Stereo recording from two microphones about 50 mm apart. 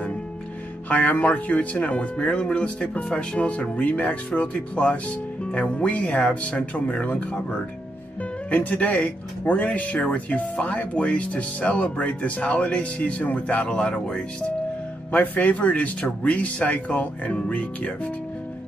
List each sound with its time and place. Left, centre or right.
0.8 s speech: left
13.7 s speech: centre
15.0 s speech: left